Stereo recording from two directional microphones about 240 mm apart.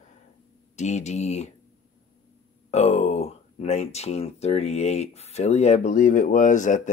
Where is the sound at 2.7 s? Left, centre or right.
Left.